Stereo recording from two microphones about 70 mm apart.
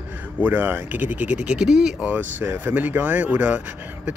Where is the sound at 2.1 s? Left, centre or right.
Right.